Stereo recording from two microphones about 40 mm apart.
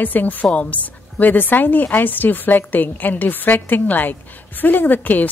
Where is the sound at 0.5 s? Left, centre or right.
Left.